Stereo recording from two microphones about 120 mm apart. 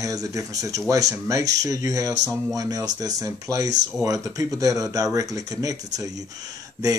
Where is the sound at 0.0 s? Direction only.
30° right (ahead or behind).